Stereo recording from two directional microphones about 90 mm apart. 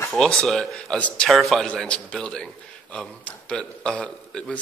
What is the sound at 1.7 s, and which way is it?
Speech, 10° left (ahead or behind).